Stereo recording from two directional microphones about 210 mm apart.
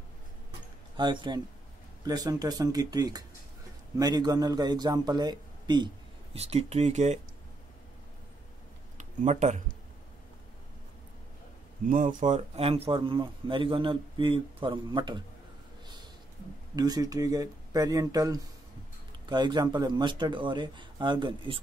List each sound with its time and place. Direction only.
0.9 s a man's voice: 20° right (ahead or behind)
8.9 s speech: 35° right (ahead or behind)
11.9 s a man's voice: 40° right (ahead or behind); by 15.2 s 20° right (ahead or behind)
16.7 s a man's voice: 20° right (ahead or behind)